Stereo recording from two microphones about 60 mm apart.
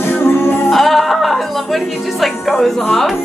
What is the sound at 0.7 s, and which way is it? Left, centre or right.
Music, centre.